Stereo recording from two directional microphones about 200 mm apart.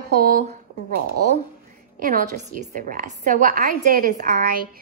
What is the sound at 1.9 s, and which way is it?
A woman's voice, 45° right (ahead or behind).